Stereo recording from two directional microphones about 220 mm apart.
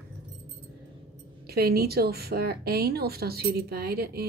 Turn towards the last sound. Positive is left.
turn(degrees=-45)  # may be behind; listen again after turning